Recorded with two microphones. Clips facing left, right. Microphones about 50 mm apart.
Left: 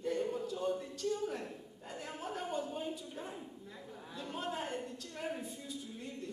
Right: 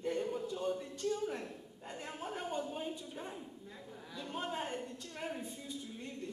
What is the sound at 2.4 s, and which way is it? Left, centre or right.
Speech, centre.